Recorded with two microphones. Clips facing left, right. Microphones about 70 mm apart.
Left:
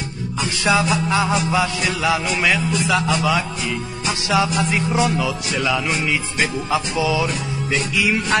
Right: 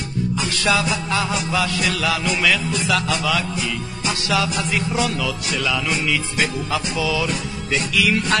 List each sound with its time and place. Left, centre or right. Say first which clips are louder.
0.4 s music: left 3 dB; left